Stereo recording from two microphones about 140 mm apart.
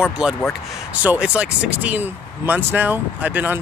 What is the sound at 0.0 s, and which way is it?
Speech, 5° right (ahead or behind).